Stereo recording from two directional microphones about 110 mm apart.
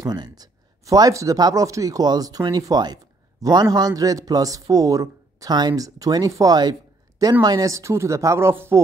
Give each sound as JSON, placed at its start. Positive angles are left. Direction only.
{"t": 0.0, "sound": "a man's voice", "side_deg": -35}